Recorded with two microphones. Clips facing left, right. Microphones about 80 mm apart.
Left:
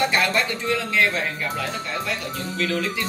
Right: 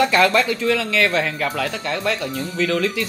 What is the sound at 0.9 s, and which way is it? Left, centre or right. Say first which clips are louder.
Speech: right 3 dB; right.